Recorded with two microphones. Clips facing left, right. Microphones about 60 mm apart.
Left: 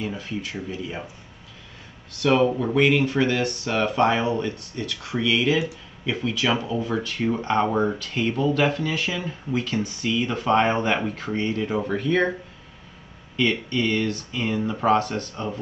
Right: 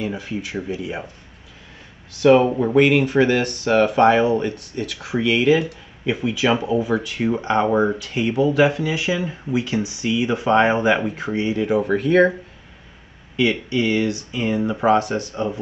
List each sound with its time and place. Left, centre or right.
0.0 s speech: centre
2.2 s speech: right
13.4 s speech: centre